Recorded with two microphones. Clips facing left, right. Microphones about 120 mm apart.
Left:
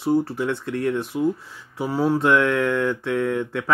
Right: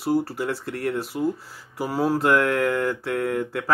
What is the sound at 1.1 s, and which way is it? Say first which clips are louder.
Speech: left 3 dB; 5° left (ahead or behind).